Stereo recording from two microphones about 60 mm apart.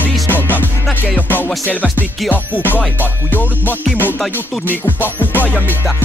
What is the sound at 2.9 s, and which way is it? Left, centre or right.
Music, left.